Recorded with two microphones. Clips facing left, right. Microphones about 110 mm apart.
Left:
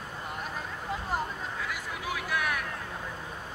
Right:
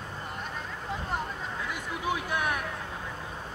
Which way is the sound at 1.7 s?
25° right (ahead or behind).